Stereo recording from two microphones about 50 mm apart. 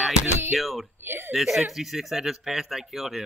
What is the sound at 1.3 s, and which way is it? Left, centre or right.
Speech, centre.